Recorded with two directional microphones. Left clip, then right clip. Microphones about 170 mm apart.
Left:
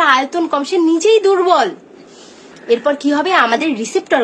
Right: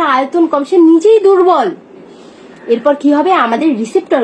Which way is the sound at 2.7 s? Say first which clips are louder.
Right 4 dB; 25° right (ahead or behind).